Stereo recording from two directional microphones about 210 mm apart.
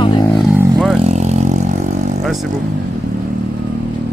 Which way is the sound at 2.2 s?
Centre (ahead or behind).